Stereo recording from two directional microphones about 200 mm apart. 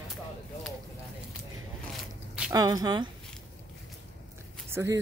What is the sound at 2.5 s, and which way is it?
Speech, 20° right (ahead or behind).